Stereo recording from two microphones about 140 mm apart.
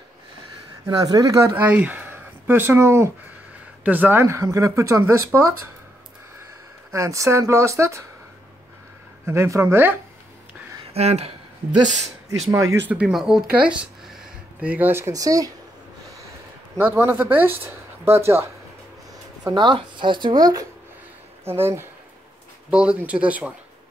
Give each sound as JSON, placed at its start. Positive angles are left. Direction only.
{"t": 0.8, "sound": "speech", "side_deg": -25}
{"t": 6.9, "sound": "speech", "side_deg": -20}
{"t": 9.2, "sound": "speech", "side_deg": -20}
{"t": 10.9, "sound": "speech", "side_deg": -45}
{"t": 12.3, "sound": "speech", "side_deg": -20}
{"t": 12.9, "sound": "speech", "side_deg": -5}
{"t": 16.7, "sound": "speech", "side_deg": -15}
{"t": 19.4, "sound": "speech", "side_deg": -35}
{"t": 21.5, "sound": "speech", "side_deg": -15}